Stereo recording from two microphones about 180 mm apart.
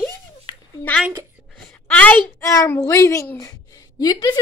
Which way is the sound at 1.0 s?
10° right (ahead or behind).